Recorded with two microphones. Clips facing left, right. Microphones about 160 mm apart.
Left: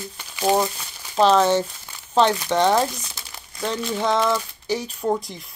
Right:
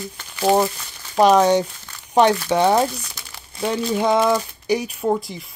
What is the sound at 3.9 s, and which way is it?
Speech, 10° right (ahead or behind).